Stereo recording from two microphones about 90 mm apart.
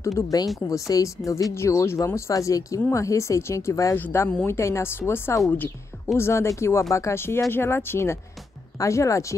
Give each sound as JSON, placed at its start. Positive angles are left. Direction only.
{"t": 0.0, "sound": "speech", "side_deg": 40}